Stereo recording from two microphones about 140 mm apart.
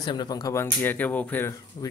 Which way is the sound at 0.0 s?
30° left (ahead or behind).